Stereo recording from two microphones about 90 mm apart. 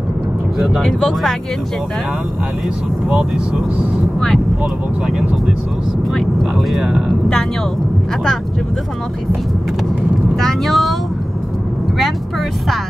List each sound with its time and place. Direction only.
0.6 s speech: 5° left (ahead or behind)
3.1 s speech: 5° right (ahead or behind)
6.5 s speech: 5° right (ahead or behind)
10.3 s speech: centre (ahead or behind)